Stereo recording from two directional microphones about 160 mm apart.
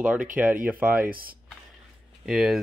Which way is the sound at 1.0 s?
65° right (ahead or behind).